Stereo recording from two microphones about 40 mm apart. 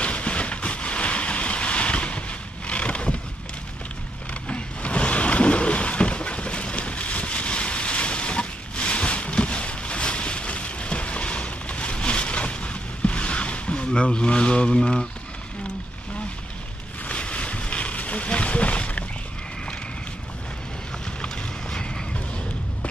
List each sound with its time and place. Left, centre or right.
0.0 s vehicle: left
4.3 s a sound: left
17.1 s boat: left
21.2 s boat: left